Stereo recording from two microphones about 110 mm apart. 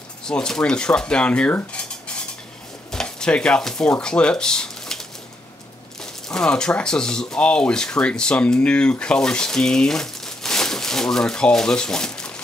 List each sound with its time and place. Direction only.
0.2 s speech: 5° left (ahead or behind)
2.9 s speech: 5° left (ahead or behind)